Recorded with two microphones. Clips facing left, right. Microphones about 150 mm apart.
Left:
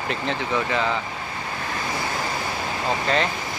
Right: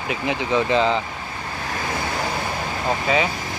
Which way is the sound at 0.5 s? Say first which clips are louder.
Right 6 dB; 25° right (ahead or behind).